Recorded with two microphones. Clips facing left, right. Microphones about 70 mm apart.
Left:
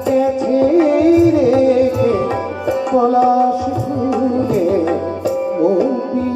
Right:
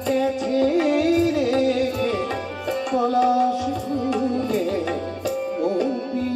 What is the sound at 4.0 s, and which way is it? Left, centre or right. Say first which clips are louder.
Tabla: left 8 dB; centre.